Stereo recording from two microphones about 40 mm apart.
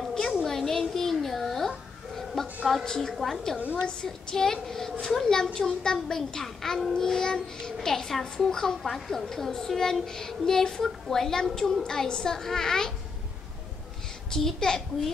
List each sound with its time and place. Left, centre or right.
0.5 s a sound: centre
2.8 s a child's voice: centre
3.5 s a woman's voice: right
3.8 s a child's voice: left
11.8 s a child's voice: centre
14.3 s a child's voice: centre